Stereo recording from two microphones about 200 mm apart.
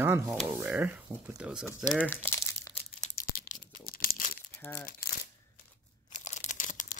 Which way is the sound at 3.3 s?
45° left (ahead or behind).